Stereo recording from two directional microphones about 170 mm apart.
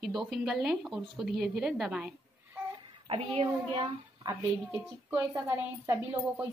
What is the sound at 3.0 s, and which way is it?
Speech, 30° right (ahead or behind).